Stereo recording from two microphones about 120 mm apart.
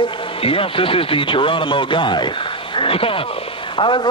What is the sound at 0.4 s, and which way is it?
Speech, 50° left (ahead or behind).